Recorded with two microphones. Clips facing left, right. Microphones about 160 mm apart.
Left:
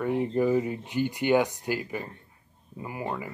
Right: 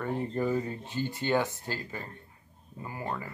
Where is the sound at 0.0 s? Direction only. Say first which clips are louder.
Left 5 dB; 10° left (ahead or behind).